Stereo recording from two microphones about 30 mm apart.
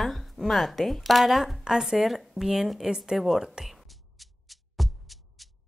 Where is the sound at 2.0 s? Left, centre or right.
Centre.